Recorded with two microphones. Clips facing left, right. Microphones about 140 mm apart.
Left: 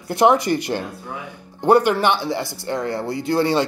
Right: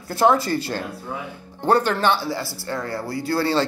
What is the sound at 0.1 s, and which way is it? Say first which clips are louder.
Speech: left 2 dB; 20° left (ahead or behind).